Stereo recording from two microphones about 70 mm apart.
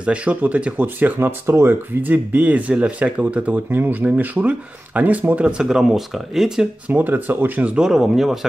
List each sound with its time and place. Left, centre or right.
0.0 s speech: centre
5.6 s speech: centre
6.9 s speech: right
7.7 s speech: centre